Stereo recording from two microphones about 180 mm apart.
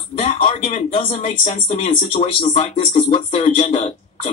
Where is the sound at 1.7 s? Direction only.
40° left (ahead or behind).